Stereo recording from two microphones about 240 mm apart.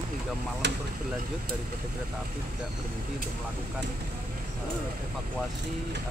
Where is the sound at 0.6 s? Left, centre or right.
Right.